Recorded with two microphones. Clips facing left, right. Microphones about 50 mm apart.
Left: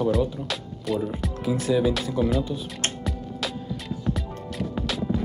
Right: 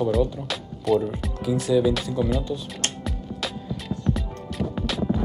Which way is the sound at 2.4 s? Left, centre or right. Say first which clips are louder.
Even; centre.